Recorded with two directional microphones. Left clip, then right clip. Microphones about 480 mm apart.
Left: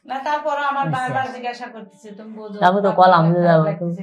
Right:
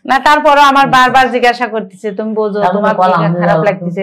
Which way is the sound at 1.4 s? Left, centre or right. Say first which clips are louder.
Right 17 dB; right.